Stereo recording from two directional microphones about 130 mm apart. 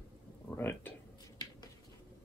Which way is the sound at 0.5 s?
15° left (ahead or behind).